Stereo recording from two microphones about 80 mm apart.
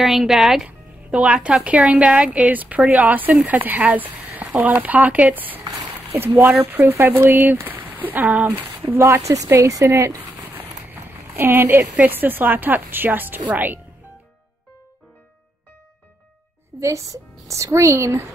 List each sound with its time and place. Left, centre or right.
0.0 s speech: centre
0.7 s speech: centre
5.6 s a sound: right
6.2 s speech: right
9.0 s speech: right
10.5 s speech: right
16.8 s speech: right